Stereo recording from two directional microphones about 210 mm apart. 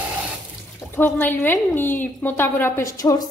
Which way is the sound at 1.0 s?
10° left (ahead or behind).